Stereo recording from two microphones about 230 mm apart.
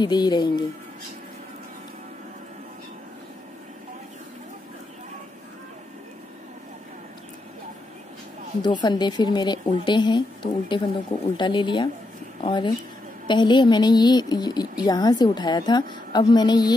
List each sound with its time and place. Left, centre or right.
0.0 s a woman's voice: centre
8.6 s a woman's voice: centre